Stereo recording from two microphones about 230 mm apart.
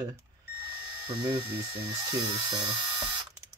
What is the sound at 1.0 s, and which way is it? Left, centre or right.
Speech, centre.